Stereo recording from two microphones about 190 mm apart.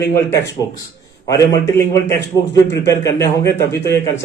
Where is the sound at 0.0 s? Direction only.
15° left (ahead or behind).